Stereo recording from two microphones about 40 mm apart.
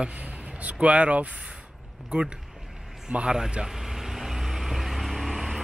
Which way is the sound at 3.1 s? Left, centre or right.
Right.